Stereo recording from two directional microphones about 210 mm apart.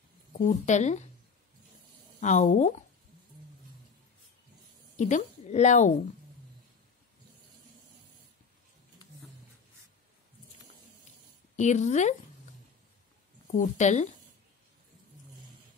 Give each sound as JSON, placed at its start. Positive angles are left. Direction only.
{"t": 0.3, "sound": "speech", "side_deg": 35}
{"t": 2.1, "sound": "speech", "side_deg": 35}
{"t": 4.9, "sound": "a woman's voice", "side_deg": 35}
{"t": 11.5, "sound": "speech", "side_deg": 35}
{"t": 13.5, "sound": "speech", "side_deg": 35}